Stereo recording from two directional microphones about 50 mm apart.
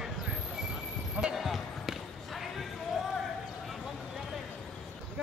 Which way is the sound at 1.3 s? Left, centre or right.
Centre.